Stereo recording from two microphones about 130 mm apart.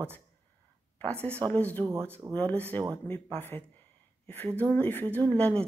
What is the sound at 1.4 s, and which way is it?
Speech, 15° left (ahead or behind).